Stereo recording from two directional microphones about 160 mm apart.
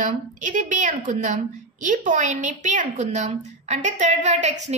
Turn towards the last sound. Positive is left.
turn(degrees=-45)  # may be behind; listen again after turning